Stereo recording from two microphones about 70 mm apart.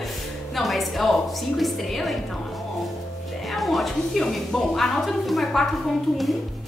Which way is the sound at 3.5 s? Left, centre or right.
Centre.